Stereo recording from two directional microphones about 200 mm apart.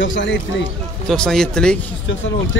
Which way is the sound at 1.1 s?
Centre (ahead or behind).